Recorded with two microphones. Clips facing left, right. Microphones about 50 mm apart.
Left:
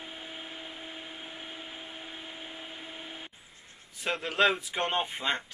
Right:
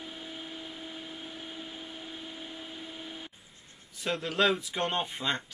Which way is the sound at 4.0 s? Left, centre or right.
Left.